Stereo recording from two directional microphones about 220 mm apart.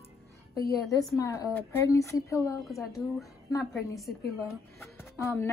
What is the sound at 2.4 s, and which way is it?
Speech, centre (ahead or behind).